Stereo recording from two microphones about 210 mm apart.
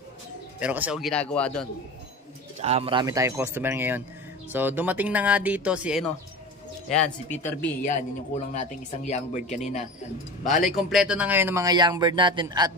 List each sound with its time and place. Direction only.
0.6 s speech: 5° right (ahead or behind)
2.6 s a man's voice: 30° right (ahead or behind); by 7.7 s 10° left (ahead or behind)
7.8 s speech: 35° left (ahead or behind)
10.6 s speech: centre (ahead or behind); by 12.7 s 20° right (ahead or behind)